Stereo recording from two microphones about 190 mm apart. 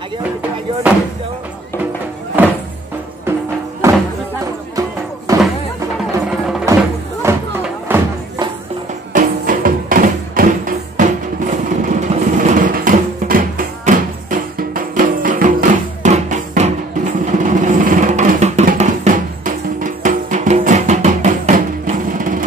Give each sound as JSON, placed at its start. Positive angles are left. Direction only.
{"t": 3.3, "sound": "music", "side_deg": -10}
{"t": 6.1, "sound": "music", "side_deg": -5}
{"t": 7.3, "sound": "music", "side_deg": -15}
{"t": 9.1, "sound": "music", "side_deg": -45}